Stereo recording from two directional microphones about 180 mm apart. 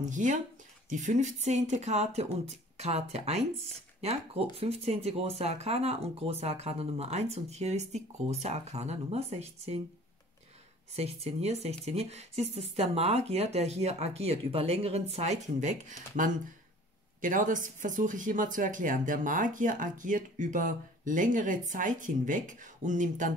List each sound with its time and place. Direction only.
0.0 s speech: 45° right (ahead or behind)
11.0 s speech: 35° right (ahead or behind)